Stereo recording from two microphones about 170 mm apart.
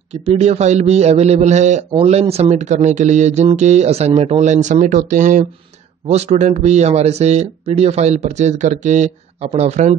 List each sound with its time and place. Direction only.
0.1 s a man's voice: 35° right (ahead or behind)